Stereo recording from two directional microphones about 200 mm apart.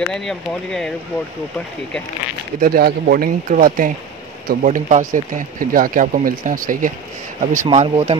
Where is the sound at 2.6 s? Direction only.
45° right (ahead or behind).